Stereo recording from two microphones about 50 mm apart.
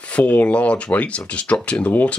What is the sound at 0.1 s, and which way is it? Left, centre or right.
Speech, left.